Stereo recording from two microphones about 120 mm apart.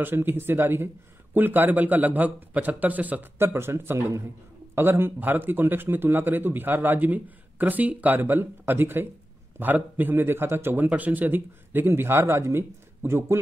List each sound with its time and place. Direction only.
0.0 s a man's voice: 20° right (ahead or behind)